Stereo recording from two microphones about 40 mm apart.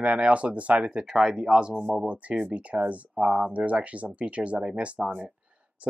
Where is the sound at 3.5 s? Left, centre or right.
Right.